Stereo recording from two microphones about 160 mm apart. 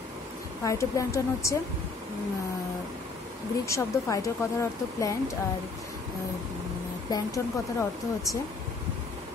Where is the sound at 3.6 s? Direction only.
20° left (ahead or behind).